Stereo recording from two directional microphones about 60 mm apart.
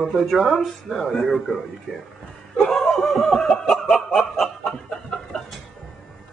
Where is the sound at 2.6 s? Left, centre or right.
Centre.